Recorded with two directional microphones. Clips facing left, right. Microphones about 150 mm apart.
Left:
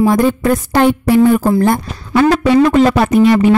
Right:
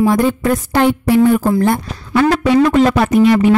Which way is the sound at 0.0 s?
40° left (ahead or behind).